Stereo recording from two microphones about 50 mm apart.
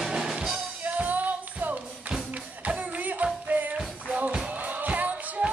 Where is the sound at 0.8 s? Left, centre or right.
Right.